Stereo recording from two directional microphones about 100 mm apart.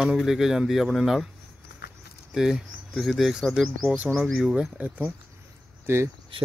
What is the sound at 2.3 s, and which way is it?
Speech, 5° right (ahead or behind).